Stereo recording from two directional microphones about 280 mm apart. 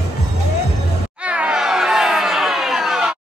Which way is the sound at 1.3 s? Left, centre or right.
Centre.